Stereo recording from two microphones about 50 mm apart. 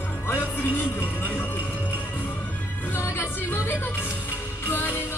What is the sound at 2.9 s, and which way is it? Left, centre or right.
Music, left.